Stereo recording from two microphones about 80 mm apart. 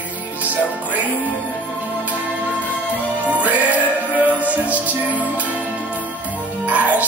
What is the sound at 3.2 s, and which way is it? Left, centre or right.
Music, centre.